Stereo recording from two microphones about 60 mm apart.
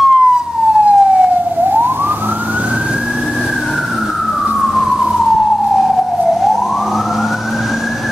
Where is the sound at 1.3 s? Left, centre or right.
Right.